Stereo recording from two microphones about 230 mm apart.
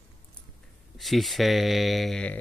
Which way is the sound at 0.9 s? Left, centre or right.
Centre.